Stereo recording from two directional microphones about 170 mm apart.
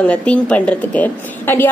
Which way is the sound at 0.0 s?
10° left (ahead or behind).